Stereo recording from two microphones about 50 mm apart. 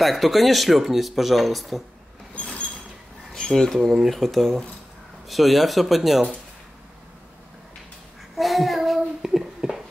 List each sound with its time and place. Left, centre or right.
0.0 s speech: centre
2.4 s a sound: centre
3.3 s speech: centre
3.9 s speech: centre
8.4 s child singing: centre